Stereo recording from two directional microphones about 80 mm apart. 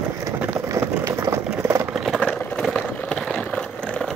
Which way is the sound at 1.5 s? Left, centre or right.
Right.